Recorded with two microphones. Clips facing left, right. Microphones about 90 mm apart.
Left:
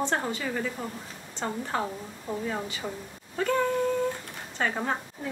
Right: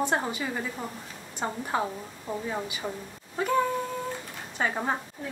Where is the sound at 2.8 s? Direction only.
15° right (ahead or behind).